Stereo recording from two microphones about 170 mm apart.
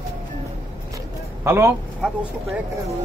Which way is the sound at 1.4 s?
15° right (ahead or behind).